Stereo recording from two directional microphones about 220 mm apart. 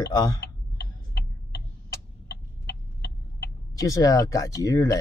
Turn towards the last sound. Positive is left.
turn(degrees=15)  # may be behind; listen again after turning